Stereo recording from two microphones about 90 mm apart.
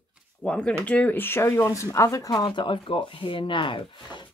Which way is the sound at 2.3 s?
60° left (ahead or behind).